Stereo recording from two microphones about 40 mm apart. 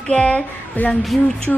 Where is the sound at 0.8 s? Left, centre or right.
Left.